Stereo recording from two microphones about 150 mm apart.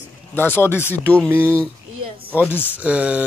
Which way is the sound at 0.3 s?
15° left (ahead or behind).